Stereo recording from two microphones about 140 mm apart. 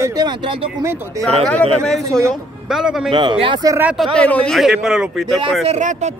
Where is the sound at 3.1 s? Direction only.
35° right (ahead or behind).